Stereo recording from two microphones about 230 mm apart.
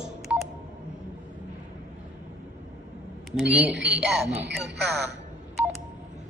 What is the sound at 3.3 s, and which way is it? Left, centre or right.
Speech, centre.